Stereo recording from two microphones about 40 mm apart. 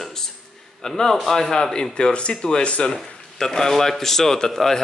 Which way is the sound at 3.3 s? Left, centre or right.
Centre.